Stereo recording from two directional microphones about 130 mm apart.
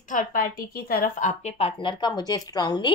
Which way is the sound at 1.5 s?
45° left (ahead or behind).